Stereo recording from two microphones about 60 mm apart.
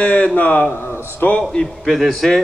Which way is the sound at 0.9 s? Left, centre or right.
Left.